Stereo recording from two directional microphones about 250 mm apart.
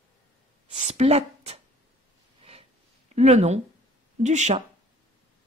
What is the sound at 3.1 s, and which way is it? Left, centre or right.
Speech, right.